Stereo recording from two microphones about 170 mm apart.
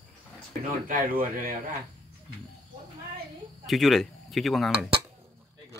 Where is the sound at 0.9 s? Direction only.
55° right (ahead or behind).